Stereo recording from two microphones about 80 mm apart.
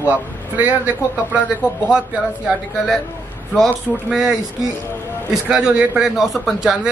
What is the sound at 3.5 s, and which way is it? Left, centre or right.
A man's voice, centre.